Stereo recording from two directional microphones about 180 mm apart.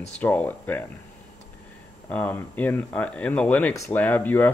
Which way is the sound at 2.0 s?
10° left (ahead or behind).